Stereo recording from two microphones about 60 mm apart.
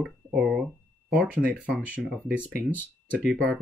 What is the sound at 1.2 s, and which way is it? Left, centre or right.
Speech, centre.